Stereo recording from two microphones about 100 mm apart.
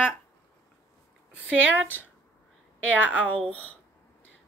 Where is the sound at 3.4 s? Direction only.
10° left (ahead or behind).